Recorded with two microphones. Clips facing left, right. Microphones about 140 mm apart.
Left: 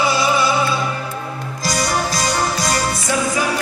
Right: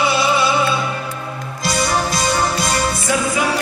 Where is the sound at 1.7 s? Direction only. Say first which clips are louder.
Right 1 dB; 25° right (ahead or behind).